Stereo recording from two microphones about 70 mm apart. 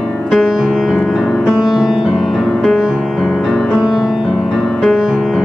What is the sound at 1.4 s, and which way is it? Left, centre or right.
Music, centre.